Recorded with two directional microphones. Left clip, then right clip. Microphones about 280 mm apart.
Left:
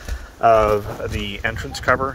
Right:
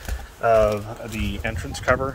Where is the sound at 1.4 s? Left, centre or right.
Centre.